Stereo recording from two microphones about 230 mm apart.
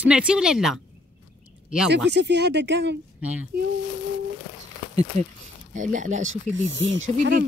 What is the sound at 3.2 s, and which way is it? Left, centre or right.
Speech, centre.